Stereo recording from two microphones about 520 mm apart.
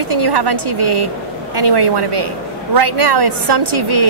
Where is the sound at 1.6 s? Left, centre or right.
Right.